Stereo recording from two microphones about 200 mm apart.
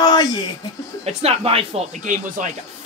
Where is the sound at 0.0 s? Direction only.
20° left (ahead or behind).